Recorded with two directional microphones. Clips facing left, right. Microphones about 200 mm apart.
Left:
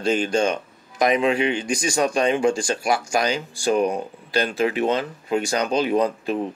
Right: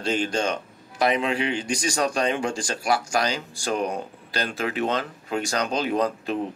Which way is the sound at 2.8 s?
10° left (ahead or behind).